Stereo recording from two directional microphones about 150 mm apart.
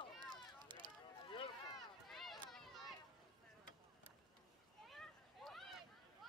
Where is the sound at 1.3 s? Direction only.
35° left (ahead or behind).